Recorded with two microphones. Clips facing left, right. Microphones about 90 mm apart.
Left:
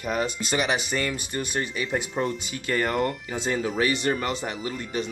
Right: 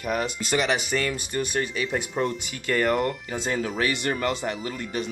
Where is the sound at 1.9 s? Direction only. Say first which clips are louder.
Left 2 dB; 5° left (ahead or behind).